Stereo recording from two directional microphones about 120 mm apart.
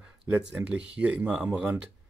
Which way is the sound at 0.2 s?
5° right (ahead or behind).